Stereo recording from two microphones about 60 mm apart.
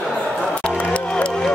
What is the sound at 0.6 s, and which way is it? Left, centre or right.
Run, left.